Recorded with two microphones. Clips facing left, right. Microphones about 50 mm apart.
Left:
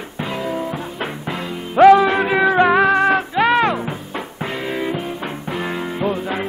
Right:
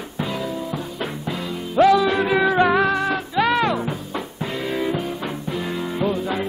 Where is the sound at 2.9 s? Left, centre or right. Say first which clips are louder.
Left 5 dB; left.